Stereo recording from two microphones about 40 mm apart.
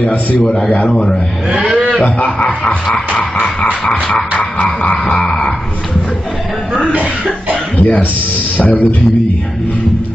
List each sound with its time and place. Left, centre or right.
0.0 s music: left
2.1 s music: left
5.2 s dog: centre
6.7 s speech: right
7.7 s speech: left